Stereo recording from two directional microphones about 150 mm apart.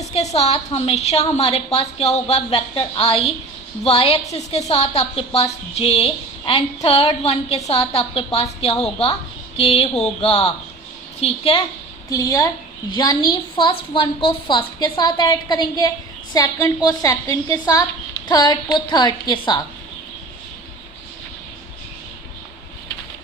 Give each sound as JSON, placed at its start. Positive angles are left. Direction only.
{"t": 0.1, "sound": "a sound", "side_deg": 45}
{"t": 0.7, "sound": "a woman's voice", "side_deg": 45}
{"t": 9.6, "sound": "a woman's voice", "side_deg": 40}
{"t": 12.1, "sound": "a woman's voice", "side_deg": 25}